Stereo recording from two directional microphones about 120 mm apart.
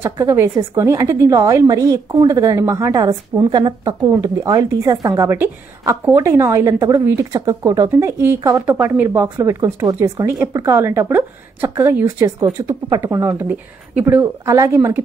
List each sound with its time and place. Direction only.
0.0 s a woman's voice: 25° right (ahead or behind)
8.6 s a woman's voice: 20° right (ahead or behind)
13.2 s speech: 15° right (ahead or behind)
14.4 s a woman's voice: 25° right (ahead or behind)